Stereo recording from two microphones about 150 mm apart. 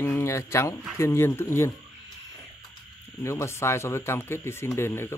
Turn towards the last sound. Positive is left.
turn(degrees=15)  # may be behind; listen again after turning